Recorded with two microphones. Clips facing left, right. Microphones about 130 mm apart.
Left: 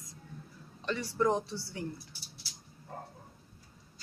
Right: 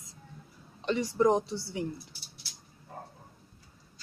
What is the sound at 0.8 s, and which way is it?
Speech, 15° right (ahead or behind).